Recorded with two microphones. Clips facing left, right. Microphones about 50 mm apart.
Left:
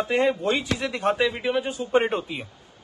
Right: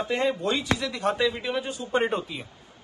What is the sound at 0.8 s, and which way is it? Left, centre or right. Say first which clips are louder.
Speech: left 2 dB; left.